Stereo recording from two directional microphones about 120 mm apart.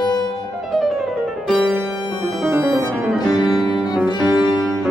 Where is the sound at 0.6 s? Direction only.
Centre (ahead or behind).